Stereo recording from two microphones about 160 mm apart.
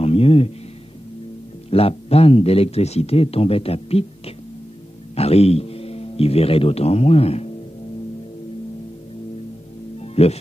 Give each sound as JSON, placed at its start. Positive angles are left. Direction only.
{"t": 0.0, "sound": "a sound", "side_deg": 35}
{"t": 1.7, "sound": "speech", "side_deg": 35}
{"t": 5.1, "sound": "a man's voice", "side_deg": 40}
{"t": 10.1, "sound": "speech", "side_deg": 40}